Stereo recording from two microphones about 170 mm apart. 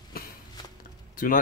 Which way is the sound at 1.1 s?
55° left (ahead or behind).